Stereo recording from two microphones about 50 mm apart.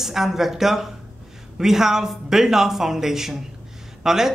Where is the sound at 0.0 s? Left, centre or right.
Centre.